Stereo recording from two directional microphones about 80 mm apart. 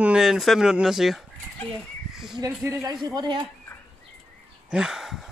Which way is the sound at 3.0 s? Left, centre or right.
Right.